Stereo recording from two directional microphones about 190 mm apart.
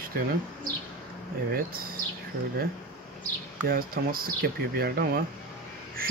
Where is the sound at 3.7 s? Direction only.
50° right (ahead or behind).